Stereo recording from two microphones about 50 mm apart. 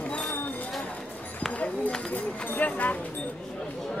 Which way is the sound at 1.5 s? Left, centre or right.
Left.